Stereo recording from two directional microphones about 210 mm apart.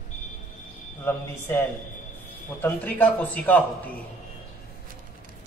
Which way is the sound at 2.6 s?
10° left (ahead or behind).